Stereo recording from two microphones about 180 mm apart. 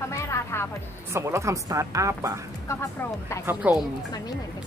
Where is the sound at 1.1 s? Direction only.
15° right (ahead or behind).